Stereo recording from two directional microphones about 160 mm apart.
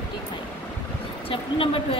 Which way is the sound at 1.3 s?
35° left (ahead or behind).